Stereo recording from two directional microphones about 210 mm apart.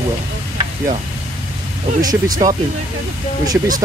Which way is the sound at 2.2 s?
40° right (ahead or behind).